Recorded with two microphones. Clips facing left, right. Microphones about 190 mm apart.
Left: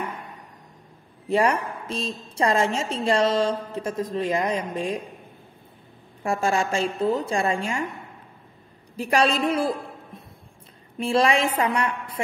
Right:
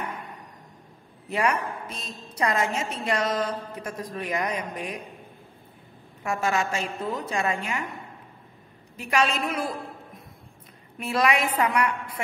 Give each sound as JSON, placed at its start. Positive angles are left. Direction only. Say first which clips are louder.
{"t": 1.3, "sound": "a woman's voice", "louder": "left 4 dB", "side_deg": 30}
{"t": 6.2, "sound": "a woman's voice", "louder": "left 3 dB", "side_deg": 30}
{"t": 8.9, "sound": "a man's voice", "louder": "left 4 dB", "side_deg": 35}